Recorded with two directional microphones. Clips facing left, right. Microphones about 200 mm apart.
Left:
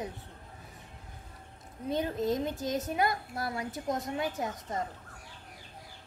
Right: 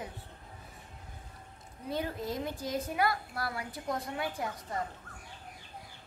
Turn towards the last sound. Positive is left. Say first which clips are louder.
# left 2 dB
turn(degrees=20)  # may be behind; listen again after turning